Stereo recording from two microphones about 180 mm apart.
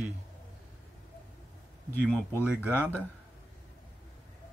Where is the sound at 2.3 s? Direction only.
10° right (ahead or behind).